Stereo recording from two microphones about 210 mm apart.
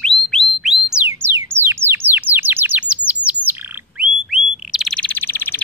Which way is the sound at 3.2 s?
10° left (ahead or behind).